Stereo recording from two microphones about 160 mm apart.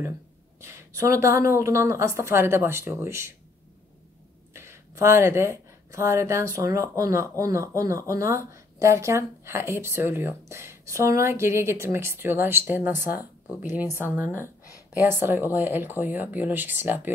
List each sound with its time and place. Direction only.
0.6 s speech: 15° right (ahead or behind)
4.6 s speech: 15° right (ahead or behind)
14.2 s speech: 15° left (ahead or behind)
14.9 s speech: 15° right (ahead or behind)